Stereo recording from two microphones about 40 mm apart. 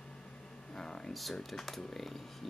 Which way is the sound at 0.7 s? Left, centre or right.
Centre.